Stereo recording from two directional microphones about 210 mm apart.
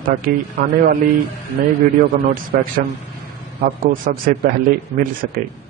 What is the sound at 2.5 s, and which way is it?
Speech, 45° right (ahead or behind).